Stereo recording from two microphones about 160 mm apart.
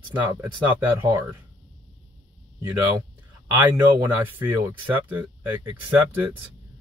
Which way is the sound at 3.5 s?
10° right (ahead or behind).